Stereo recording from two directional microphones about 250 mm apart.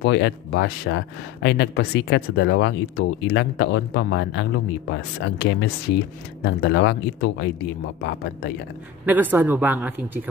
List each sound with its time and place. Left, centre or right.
0.0 s speech: left
9.0 s speech: centre